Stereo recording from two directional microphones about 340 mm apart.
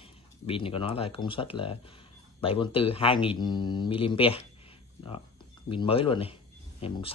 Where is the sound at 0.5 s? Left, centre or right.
Centre.